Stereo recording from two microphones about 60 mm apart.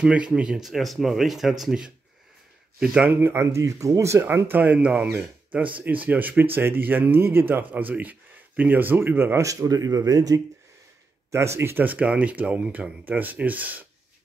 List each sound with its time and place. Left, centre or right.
0.0 s speech: centre
0.7 s speech: centre
3.2 s speech: right
4.5 s speech: right
9.4 s speech: right
11.3 s speech: right
11.8 s speech: right